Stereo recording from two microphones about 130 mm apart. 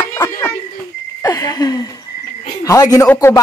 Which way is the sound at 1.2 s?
30° left (ahead or behind).